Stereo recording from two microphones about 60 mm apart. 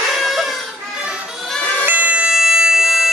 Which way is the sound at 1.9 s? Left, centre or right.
Right.